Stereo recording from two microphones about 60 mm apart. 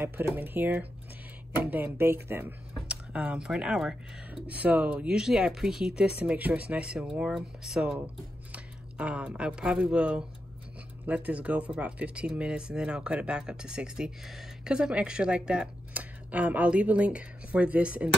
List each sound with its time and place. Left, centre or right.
0.3 s speech: right
2.9 s speech: centre
4.5 s speech: right
5.1 s speech: centre
8.5 s a sound: centre
9.4 s speech: centre
11.2 s speech: right